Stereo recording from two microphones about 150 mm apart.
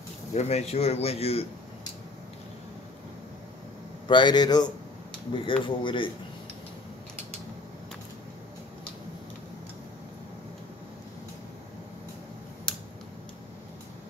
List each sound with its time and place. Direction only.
0.3 s a man's voice: 45° left (ahead or behind)
4.1 s speech: 30° left (ahead or behind)
12.7 s scissors: 5° left (ahead or behind)